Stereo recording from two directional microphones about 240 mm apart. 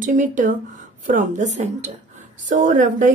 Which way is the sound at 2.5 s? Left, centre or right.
Right.